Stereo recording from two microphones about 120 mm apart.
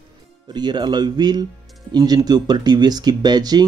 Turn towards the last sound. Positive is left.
turn(degrees=-35)  # may be behind; listen again after turning